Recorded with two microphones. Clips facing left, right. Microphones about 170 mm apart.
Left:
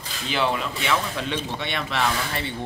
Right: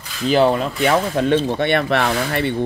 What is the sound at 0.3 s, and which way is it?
Speech, 40° right (ahead or behind).